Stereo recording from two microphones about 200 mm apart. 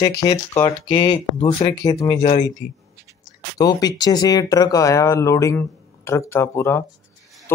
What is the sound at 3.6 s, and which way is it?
Speech, 20° left (ahead or behind).